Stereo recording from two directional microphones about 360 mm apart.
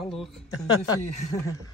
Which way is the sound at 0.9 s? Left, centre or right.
Centre.